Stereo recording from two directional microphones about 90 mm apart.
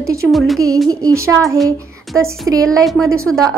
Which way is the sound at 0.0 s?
35° right (ahead or behind).